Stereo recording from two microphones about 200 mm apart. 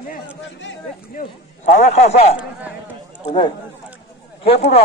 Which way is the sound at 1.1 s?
40° left (ahead or behind).